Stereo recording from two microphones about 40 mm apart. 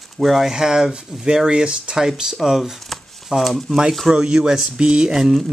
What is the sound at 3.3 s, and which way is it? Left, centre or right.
Speech, centre.